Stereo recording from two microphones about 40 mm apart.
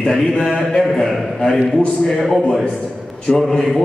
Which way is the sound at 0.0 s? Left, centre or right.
Centre.